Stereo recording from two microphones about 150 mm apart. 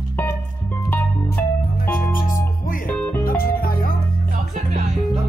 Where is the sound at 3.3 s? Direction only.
75° left (ahead or behind).